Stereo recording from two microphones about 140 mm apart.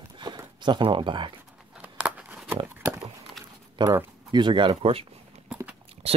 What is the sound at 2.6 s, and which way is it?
Horse, 20° right (ahead or behind).